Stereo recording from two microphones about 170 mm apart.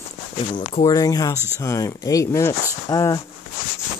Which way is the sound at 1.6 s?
15° left (ahead or behind).